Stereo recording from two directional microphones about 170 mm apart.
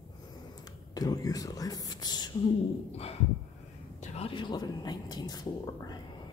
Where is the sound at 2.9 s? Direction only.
35° left (ahead or behind).